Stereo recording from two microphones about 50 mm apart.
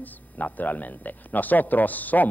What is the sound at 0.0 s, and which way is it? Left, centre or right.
Speech, left.